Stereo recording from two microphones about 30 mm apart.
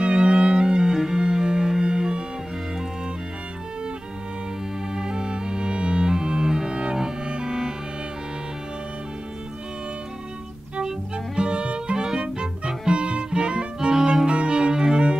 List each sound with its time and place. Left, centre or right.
0.0 s music: right
0.9 s music: centre
4.9 s music: right
10.8 s violin: right
12.0 s music: centre
12.4 s music: right
14.2 s cello: right